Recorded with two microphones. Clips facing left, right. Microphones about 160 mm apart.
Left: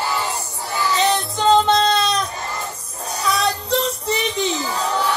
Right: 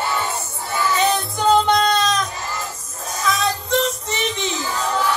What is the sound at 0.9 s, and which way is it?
Music, 20° left (ahead or behind).